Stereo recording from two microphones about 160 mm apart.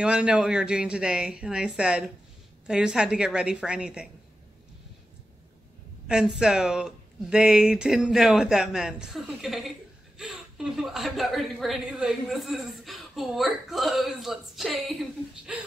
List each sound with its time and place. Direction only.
0.0 s speech: 5° right (ahead or behind)
6.0 s speech: 5° right (ahead or behind)